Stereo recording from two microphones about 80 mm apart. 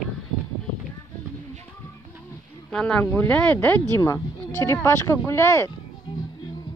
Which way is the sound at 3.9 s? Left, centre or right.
Left.